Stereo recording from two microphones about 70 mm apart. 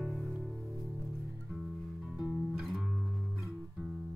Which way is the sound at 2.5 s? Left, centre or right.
Centre.